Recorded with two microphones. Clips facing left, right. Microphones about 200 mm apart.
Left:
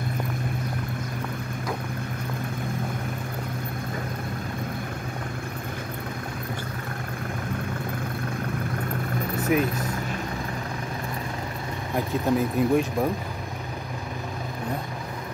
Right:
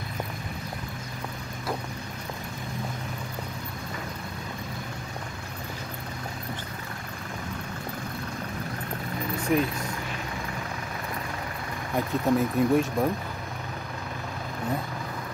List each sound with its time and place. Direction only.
9.5 s speech: 5° left (ahead or behind)
12.3 s speech: centre (ahead or behind)